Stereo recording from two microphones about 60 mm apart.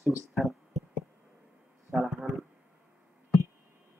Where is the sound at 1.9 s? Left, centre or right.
Centre.